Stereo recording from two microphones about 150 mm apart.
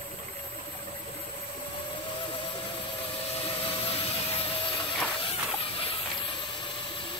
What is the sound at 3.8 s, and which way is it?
Jet engine, 40° left (ahead or behind).